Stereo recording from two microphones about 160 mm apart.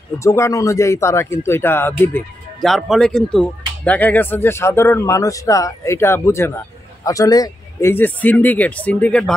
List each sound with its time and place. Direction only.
0.2 s speech: 20° left (ahead or behind)
2.6 s speech: centre (ahead or behind)